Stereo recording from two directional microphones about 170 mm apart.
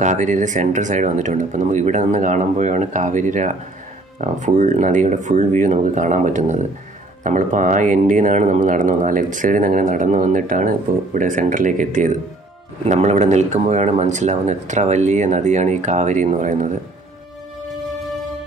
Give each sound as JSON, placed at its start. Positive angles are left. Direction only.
{"t": 0.0, "sound": "speech", "side_deg": -45}
{"t": 17.6, "sound": "music", "side_deg": 0}